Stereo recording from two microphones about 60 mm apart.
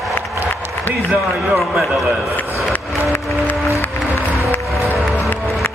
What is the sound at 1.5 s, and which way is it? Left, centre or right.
Speech, centre.